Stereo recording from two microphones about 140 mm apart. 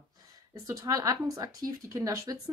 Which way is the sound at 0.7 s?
25° right (ahead or behind).